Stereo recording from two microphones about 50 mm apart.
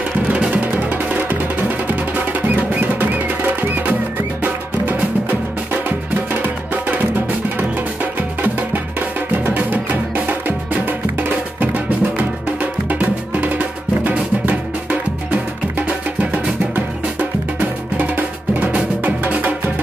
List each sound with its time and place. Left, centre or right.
0.3 s music: right
0.6 s music: right
16.7 s music: right